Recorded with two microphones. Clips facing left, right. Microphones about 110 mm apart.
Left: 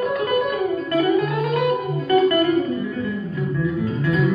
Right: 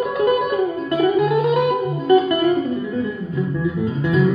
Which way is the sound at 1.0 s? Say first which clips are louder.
Right 3 dB; 20° right (ahead or behind).